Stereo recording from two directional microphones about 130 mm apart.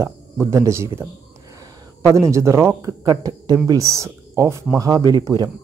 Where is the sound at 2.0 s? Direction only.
25° right (ahead or behind).